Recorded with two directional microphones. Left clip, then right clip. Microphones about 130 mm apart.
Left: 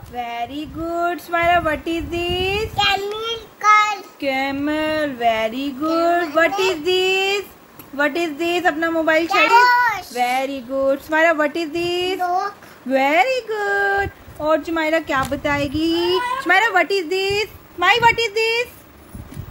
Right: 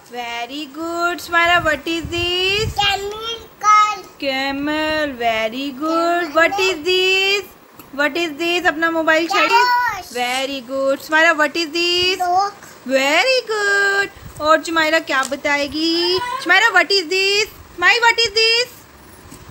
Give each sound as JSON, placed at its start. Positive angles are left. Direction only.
{"t": 0.1, "sound": "speech", "side_deg": 0}
{"t": 2.9, "sound": "child singing", "side_deg": 25}
{"t": 4.2, "sound": "speech", "side_deg": 5}
{"t": 9.5, "sound": "children playing", "side_deg": 50}
{"t": 10.1, "sound": "speech", "side_deg": 10}
{"t": 17.7, "sound": "a woman's voice", "side_deg": 20}
{"t": 18.2, "sound": "speech", "side_deg": 5}